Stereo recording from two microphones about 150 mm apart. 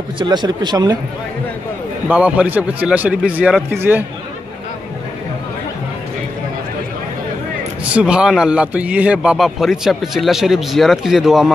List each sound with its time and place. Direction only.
0.2 s speech: 30° right (ahead or behind)
2.0 s a man's voice: 10° right (ahead or behind)
7.8 s a man's voice: 5° right (ahead or behind)